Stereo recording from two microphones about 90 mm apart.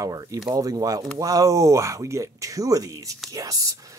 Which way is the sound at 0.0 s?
40° right (ahead or behind).